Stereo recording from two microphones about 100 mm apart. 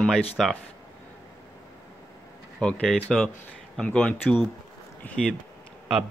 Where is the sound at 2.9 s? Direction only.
5° left (ahead or behind).